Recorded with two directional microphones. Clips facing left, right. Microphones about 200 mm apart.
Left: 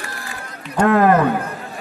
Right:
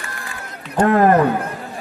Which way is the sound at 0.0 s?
35° left (ahead or behind).